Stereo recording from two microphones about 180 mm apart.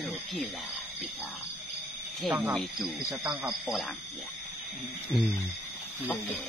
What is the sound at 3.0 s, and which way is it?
Speech, 10° right (ahead or behind).